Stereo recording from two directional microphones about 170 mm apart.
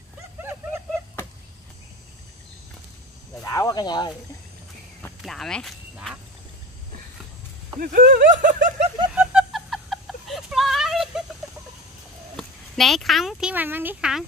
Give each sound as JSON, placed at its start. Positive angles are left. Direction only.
{"t": 0.4, "sound": "a sound", "side_deg": -15}
{"t": 3.4, "sound": "speech", "side_deg": 20}
{"t": 5.2, "sound": "speech", "side_deg": 0}
{"t": 7.8, "sound": "speech", "side_deg": -55}
{"t": 9.1, "sound": "a sound", "side_deg": -5}
{"t": 12.4, "sound": "speech", "side_deg": 0}